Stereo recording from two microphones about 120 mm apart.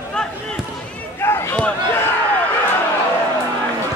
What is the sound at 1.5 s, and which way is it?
Speech, 10° left (ahead or behind).